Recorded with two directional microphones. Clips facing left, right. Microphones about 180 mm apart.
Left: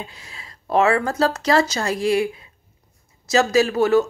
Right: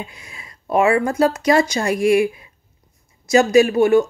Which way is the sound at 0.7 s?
10° right (ahead or behind).